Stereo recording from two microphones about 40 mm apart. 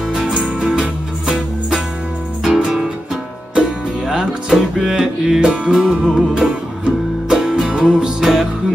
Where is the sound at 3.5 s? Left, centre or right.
Centre.